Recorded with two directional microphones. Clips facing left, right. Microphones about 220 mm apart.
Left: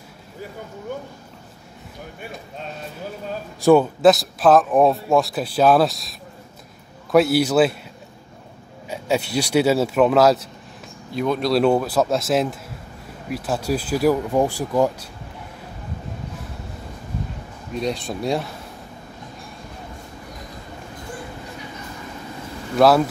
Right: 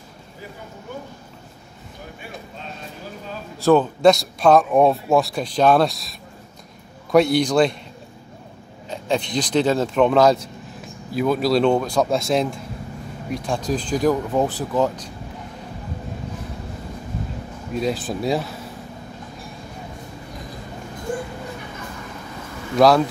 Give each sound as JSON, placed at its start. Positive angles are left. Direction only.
{"t": 3.6, "sound": "speech", "side_deg": 10}
{"t": 8.8, "sound": "speech", "side_deg": 10}
{"t": 17.7, "sound": "speech", "side_deg": 0}
{"t": 22.8, "sound": "speech", "side_deg": 5}